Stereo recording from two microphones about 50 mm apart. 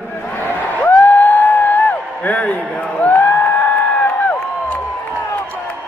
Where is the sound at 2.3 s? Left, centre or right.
Left.